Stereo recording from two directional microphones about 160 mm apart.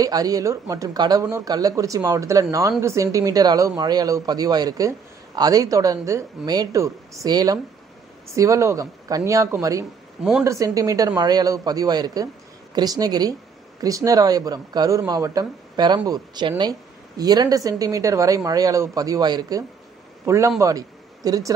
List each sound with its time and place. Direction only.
0.0 s speech: 25° right (ahead or behind)